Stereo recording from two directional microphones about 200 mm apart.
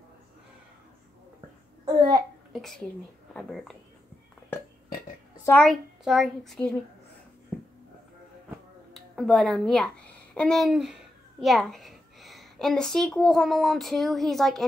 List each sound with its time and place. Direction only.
2.0 s a child's voice: 20° right (ahead or behind)
2.5 s a woman's voice: centre (ahead or behind)
5.4 s a woman's voice: 5° left (ahead or behind)
8.9 s a child's voice: centre (ahead or behind)